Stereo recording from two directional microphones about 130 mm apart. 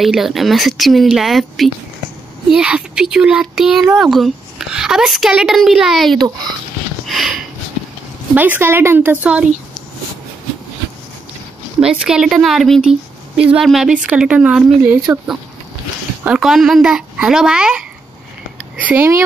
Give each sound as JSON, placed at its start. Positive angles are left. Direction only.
{"t": 0.0, "sound": "a woman's voice", "side_deg": 0}
{"t": 7.1, "sound": "a sound", "side_deg": 0}
{"t": 8.4, "sound": "speech", "side_deg": -15}
{"t": 11.8, "sound": "a woman's voice", "side_deg": -5}
{"t": 16.3, "sound": "a woman's voice", "side_deg": -5}